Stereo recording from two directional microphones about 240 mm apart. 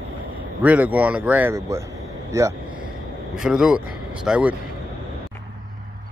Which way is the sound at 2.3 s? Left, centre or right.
Centre.